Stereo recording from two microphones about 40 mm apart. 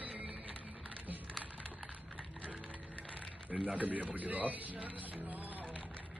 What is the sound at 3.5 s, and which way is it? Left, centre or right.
Speech, right.